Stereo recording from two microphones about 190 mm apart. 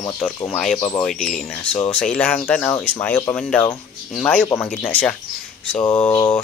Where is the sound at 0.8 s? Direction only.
25° left (ahead or behind).